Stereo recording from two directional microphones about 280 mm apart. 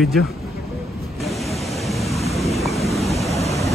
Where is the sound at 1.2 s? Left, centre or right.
Centre.